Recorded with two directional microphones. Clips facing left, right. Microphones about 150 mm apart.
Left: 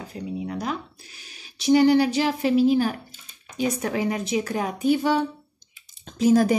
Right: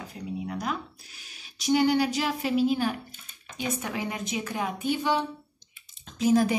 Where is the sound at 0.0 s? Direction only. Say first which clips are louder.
Left 4 dB; 35° left (ahead or behind).